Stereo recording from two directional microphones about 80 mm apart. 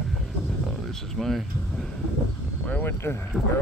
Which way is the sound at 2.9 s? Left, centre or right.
Left.